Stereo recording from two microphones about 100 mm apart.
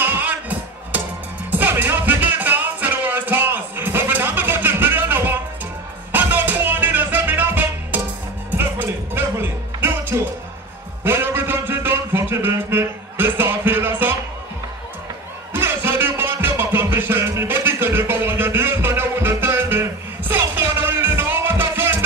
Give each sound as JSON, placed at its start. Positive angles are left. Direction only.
{"t": 0.0, "sound": "music", "side_deg": -15}
{"t": 11.1, "sound": "a sound", "side_deg": -25}
{"t": 15.5, "sound": "music", "side_deg": -20}